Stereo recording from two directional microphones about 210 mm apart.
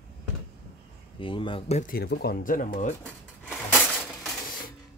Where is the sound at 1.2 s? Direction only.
25° left (ahead or behind).